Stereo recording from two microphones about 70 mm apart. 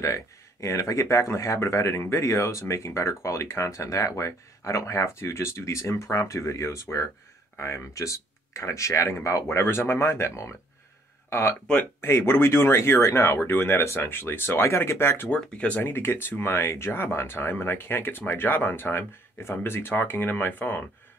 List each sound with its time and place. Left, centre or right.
0.0 s speech: left
15.2 s speech: centre
15.8 s speech: left